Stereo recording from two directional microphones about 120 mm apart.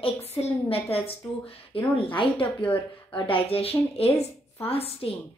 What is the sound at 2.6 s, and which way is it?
Speech, 10° left (ahead or behind).